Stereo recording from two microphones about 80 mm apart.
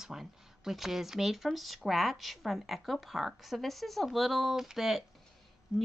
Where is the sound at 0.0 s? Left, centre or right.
Centre.